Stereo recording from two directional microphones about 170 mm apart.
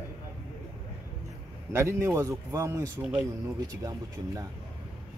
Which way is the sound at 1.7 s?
15° right (ahead or behind).